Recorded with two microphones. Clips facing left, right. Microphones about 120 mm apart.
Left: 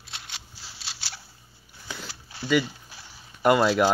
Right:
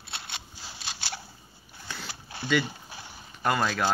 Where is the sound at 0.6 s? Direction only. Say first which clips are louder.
Right 4 dB; 50° right (ahead or behind).